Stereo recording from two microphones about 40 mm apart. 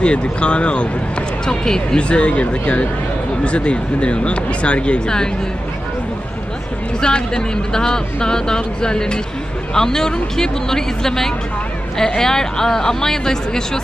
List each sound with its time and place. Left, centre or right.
0.0 s speech: left
1.4 s speech: centre
2.0 s speech: left
7.0 s speech: centre